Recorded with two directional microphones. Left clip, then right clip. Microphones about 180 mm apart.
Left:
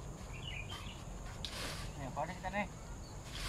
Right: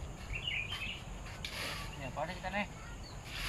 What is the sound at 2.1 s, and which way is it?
Cricket, 40° right (ahead or behind).